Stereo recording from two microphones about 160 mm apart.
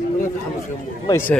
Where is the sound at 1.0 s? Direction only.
15° left (ahead or behind).